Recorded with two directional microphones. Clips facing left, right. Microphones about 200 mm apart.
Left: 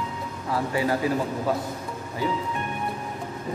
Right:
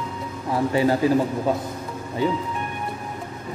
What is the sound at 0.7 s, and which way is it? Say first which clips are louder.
Speech: right 5 dB; 30° right (ahead or behind).